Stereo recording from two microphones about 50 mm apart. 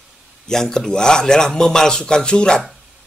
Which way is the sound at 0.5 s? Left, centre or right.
Centre.